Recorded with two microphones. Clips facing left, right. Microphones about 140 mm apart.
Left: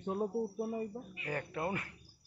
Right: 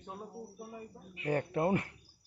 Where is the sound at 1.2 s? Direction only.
30° right (ahead or behind).